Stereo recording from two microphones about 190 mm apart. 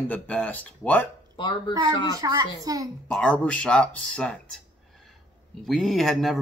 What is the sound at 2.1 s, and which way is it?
Speech, 20° right (ahead or behind).